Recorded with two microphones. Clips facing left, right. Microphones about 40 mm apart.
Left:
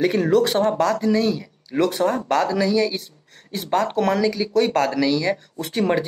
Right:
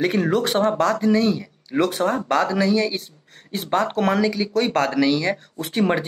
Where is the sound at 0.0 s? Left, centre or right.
Centre.